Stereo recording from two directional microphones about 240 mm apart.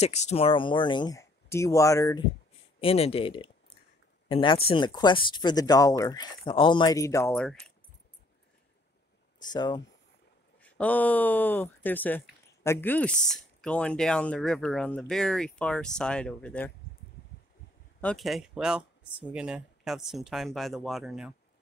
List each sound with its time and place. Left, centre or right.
0.0 s speech: left
2.8 s speech: left; by 7.7 s centre
9.4 s speech: centre
10.6 s speech: centre
18.0 s speech: centre